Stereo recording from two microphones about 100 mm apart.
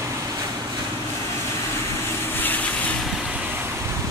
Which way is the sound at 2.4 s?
15° left (ahead or behind).